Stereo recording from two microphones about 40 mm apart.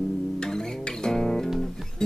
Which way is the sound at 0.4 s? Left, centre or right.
Centre.